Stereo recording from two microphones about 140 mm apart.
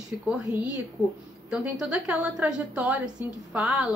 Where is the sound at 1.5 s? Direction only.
5° right (ahead or behind).